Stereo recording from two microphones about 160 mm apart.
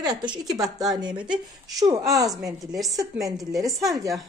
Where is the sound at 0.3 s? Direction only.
25° right (ahead or behind).